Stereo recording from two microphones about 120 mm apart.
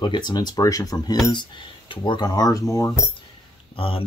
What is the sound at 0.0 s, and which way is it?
Speech, 35° left (ahead or behind).